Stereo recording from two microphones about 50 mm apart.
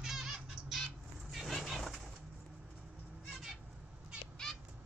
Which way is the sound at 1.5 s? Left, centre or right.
Centre.